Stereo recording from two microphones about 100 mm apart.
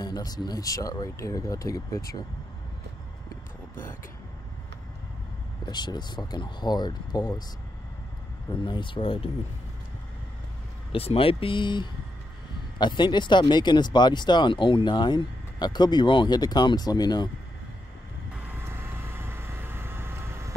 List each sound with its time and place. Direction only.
0.0 s speech: 40° left (ahead or behind)
5.7 s speech: 45° left (ahead or behind)
8.6 s speech: 55° left (ahead or behind)
10.9 s speech: 70° left (ahead or behind); by 17.3 s 40° left (ahead or behind)
18.6 s vehicle: 25° right (ahead or behind)